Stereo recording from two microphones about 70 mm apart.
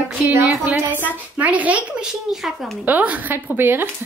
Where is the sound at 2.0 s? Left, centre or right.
Centre.